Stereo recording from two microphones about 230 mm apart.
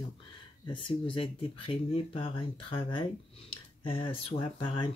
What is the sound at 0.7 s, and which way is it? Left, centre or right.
Speech, left.